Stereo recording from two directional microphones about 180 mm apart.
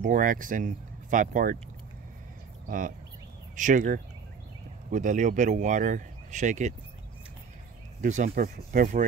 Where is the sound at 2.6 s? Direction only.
50° right (ahead or behind).